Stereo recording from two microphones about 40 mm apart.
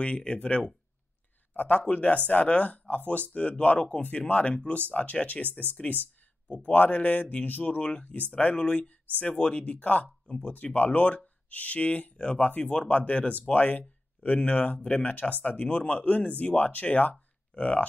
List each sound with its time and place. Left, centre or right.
0.0 s speech: left
1.5 s a man's voice: left